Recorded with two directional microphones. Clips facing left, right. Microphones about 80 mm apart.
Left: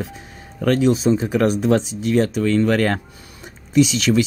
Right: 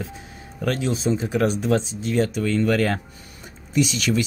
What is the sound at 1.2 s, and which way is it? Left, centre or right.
Speech, left.